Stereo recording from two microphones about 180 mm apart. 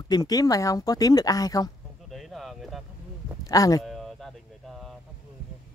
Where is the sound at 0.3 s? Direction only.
20° left (ahead or behind).